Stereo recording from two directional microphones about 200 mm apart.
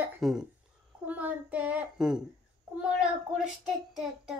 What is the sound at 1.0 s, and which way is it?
A child's voice, 5° right (ahead or behind).